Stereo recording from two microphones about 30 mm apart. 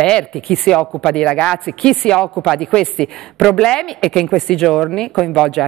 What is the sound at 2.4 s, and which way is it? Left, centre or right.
Speech, centre.